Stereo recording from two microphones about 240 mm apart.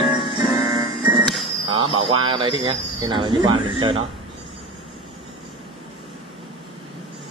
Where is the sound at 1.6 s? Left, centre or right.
Right.